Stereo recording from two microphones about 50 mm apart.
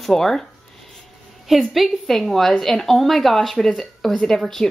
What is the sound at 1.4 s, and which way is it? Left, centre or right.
A woman's voice, centre.